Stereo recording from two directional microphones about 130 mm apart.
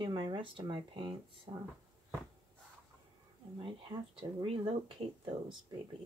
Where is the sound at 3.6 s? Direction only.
40° right (ahead or behind).